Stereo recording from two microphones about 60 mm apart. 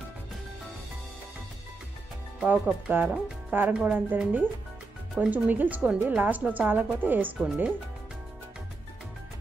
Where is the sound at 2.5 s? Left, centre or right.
Right.